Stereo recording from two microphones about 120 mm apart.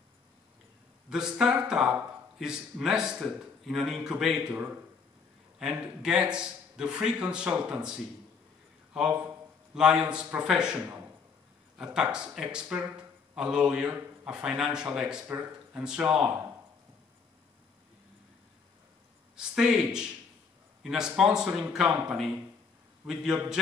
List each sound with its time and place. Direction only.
1.1 s a man's voice: 5° right (ahead or behind)
5.6 s speech: 10° right (ahead or behind)
9.1 s a man's voice: 15° right (ahead or behind)
15.8 s speech: 5° right (ahead or behind)
19.3 s a man's voice: 5° right (ahead or behind)